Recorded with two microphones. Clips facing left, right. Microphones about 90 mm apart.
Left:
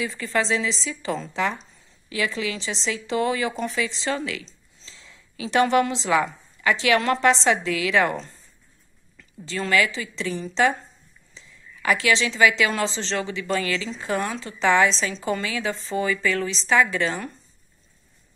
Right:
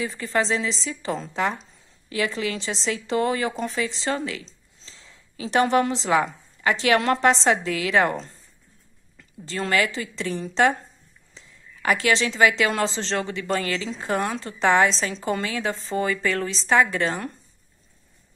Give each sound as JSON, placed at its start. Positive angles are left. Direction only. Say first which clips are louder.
{"t": 0.0, "sound": "a woman's voice", "louder": "even", "side_deg": -35}